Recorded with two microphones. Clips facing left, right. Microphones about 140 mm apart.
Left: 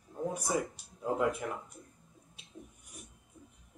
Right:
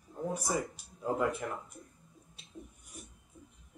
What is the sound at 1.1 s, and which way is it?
Speech, centre (ahead or behind).